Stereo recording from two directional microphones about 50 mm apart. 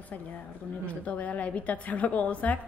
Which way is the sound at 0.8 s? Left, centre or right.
Left.